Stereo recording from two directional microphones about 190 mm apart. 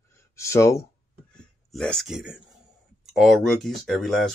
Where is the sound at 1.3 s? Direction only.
5° left (ahead or behind).